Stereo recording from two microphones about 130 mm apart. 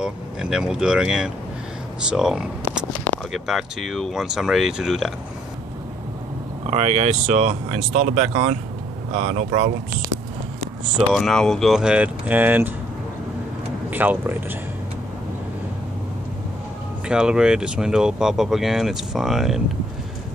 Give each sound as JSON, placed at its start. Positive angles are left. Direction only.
{"t": 0.0, "sound": "speech", "side_deg": -5}
{"t": 6.7, "sound": "speech", "side_deg": -60}
{"t": 11.0, "sound": "speech", "side_deg": 0}
{"t": 13.8, "sound": "speech", "side_deg": -15}
{"t": 17.1, "sound": "speech", "side_deg": -5}